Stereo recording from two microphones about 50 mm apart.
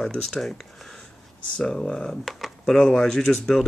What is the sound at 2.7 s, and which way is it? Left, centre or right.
Speech, centre.